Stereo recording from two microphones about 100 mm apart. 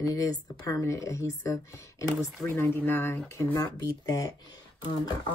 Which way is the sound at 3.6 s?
40° left (ahead or behind).